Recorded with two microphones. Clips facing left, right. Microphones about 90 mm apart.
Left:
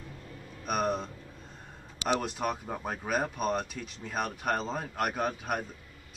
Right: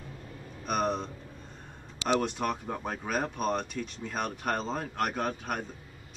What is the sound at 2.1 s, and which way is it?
Speech, 5° left (ahead or behind).